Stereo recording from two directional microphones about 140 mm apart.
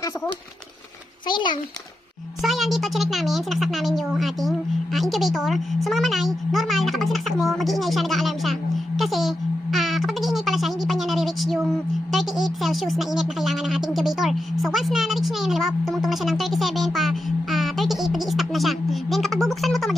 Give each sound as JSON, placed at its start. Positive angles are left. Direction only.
{"t": 1.3, "sound": "a child's voice", "side_deg": 35}
{"t": 2.4, "sound": "speech", "side_deg": 0}
{"t": 12.1, "sound": "a sound", "side_deg": 0}